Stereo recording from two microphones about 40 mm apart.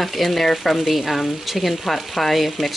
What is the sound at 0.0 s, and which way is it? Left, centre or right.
Speech, centre.